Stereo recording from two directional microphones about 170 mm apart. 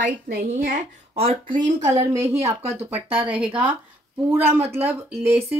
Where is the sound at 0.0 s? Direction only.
50° right (ahead or behind).